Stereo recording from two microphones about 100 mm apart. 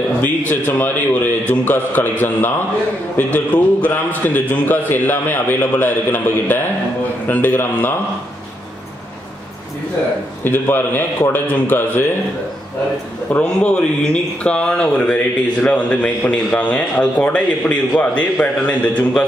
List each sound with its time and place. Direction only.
0.2 s a man's voice: 15° left (ahead or behind)
10.4 s a man's voice: 20° left (ahead or behind)
13.3 s a man's voice: 15° left (ahead or behind)